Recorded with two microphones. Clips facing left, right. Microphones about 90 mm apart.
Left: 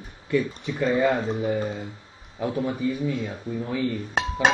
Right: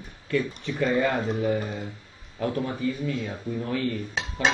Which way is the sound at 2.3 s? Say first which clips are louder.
Left 1 dB; 10° left (ahead or behind).